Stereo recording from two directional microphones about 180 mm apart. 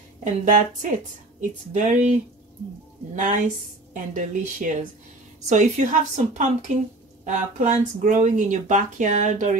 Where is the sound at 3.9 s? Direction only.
45° right (ahead or behind).